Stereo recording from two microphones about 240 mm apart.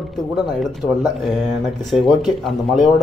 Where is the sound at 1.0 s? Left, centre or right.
Centre.